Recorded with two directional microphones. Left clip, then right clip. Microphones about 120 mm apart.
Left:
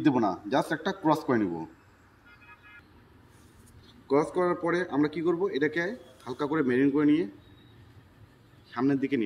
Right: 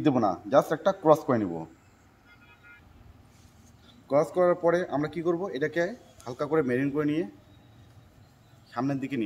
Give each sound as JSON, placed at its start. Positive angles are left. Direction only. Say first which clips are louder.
{"t": 0.0, "sound": "a man's voice", "louder": "right 1 dB", "side_deg": -75}
{"t": 4.1, "sound": "speech", "louder": "right 3 dB", "side_deg": -65}
{"t": 8.7, "sound": "a man's voice", "louder": "left 3 dB", "side_deg": -65}